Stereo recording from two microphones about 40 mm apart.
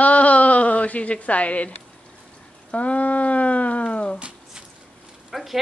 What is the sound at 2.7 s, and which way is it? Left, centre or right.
A woman's voice, left.